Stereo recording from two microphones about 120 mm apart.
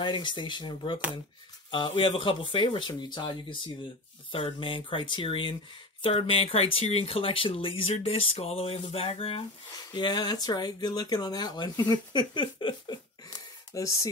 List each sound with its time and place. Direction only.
0.0 s speech: 40° left (ahead or behind)
9.9 s speech: 40° left (ahead or behind)